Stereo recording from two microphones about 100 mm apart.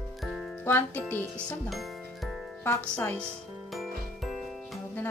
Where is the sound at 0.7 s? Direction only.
20° left (ahead or behind).